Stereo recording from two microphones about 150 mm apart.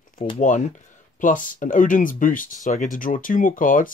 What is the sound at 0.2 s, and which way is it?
Speech, 40° left (ahead or behind).